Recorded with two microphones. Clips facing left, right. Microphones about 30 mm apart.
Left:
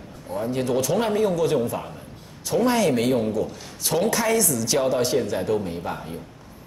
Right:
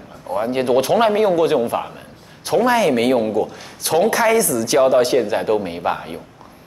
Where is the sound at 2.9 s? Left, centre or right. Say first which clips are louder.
Right 5 dB; right.